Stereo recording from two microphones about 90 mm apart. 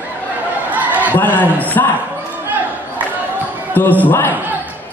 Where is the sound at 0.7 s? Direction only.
20° right (ahead or behind).